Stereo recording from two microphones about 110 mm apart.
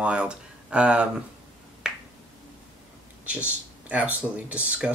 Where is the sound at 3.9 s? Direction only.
15° right (ahead or behind).